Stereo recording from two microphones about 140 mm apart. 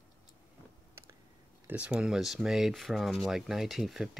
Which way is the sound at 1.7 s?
10° right (ahead or behind).